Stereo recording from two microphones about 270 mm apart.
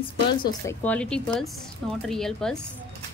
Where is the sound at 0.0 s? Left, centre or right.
Centre.